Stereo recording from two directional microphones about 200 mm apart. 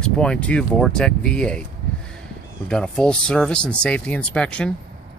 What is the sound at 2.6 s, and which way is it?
Speech, 5° left (ahead or behind).